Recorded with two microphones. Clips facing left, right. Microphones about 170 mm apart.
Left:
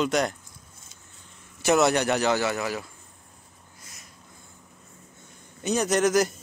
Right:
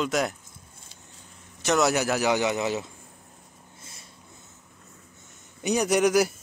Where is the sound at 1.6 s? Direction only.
10° left (ahead or behind).